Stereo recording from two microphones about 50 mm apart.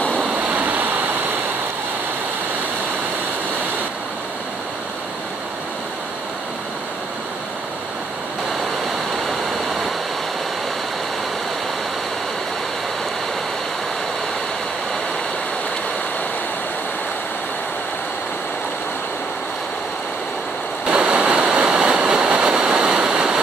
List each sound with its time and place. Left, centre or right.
0.5 s waves: right
20.9 s a sound: right
21.6 s waves: centre